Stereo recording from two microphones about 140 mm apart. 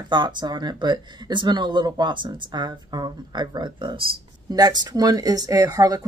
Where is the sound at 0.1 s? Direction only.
35° right (ahead or behind).